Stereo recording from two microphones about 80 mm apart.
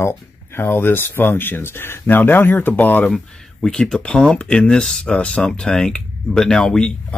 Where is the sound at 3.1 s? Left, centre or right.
Centre.